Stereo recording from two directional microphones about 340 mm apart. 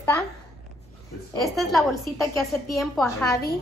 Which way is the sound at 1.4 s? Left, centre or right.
Centre.